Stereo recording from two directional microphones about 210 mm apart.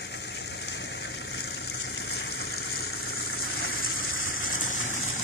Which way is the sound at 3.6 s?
75° left (ahead or behind).